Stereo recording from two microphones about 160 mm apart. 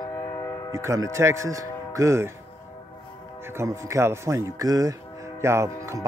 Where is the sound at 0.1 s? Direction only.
25° left (ahead or behind).